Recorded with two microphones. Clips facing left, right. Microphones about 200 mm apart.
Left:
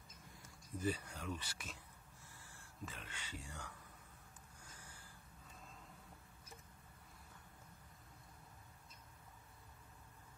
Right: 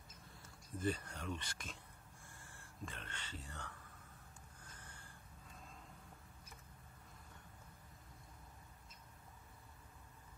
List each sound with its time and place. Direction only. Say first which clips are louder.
0.7 s speech: right 1 dB; 10° left (ahead or behind)